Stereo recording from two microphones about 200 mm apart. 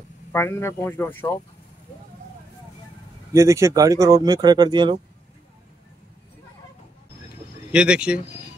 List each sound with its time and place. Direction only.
0.3 s speech: 10° left (ahead or behind)
3.3 s speech: 15° right (ahead or behind)
7.7 s speech: 5° right (ahead or behind)